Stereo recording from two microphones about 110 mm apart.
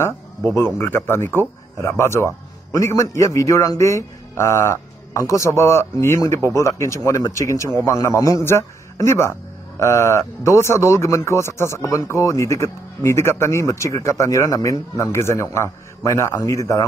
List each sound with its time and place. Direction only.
0.6 s a man's voice: 20° left (ahead or behind)